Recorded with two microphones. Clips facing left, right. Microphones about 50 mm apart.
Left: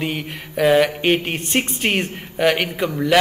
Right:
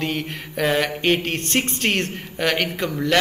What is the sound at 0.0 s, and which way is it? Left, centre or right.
Speech, centre.